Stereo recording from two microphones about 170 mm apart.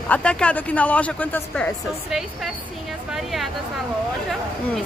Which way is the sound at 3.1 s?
Centre (ahead or behind).